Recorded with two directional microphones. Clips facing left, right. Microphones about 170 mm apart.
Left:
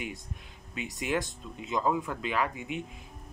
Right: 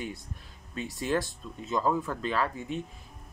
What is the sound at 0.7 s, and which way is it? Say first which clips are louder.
Speech: right 2 dB; 15° left (ahead or behind).